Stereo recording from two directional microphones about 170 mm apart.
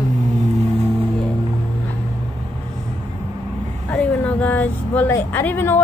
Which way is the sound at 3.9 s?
10° left (ahead or behind).